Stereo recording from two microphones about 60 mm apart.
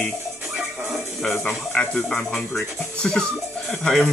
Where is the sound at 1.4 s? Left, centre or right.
Centre.